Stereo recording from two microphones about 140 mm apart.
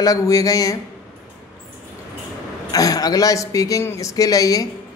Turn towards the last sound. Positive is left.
turn(degrees=25)  # may be behind; listen again after turning